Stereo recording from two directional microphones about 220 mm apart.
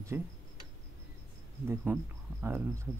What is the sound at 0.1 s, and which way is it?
Speech, 10° right (ahead or behind).